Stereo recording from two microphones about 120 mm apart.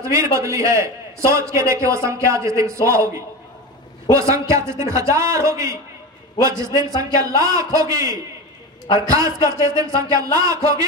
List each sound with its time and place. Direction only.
0.0 s a man's voice: 25° right (ahead or behind)